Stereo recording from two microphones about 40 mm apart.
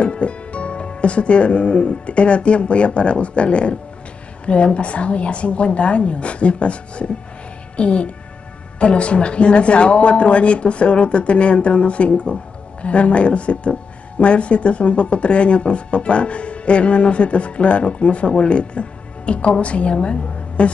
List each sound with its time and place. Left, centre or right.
0.0 s a woman's voice: left